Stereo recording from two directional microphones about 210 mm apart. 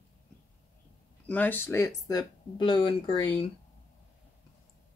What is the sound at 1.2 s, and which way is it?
Speech, 10° left (ahead or behind).